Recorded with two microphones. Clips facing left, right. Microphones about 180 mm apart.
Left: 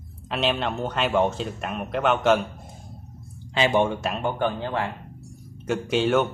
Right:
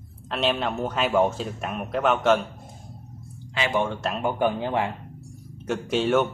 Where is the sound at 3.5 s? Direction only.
25° left (ahead or behind).